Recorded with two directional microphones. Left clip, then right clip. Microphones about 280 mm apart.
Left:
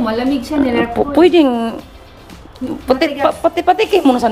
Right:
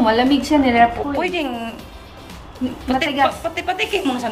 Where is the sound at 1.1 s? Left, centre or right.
Left.